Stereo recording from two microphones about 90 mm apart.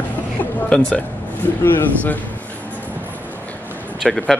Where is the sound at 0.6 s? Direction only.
10° left (ahead or behind).